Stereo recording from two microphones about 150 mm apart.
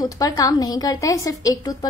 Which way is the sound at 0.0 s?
25° left (ahead or behind).